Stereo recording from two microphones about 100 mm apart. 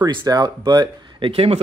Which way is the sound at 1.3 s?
75° right (ahead or behind).